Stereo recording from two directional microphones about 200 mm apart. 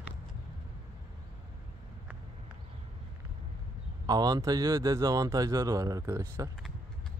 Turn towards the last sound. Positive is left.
turn(degrees=-15)  # may be behind; listen again after turning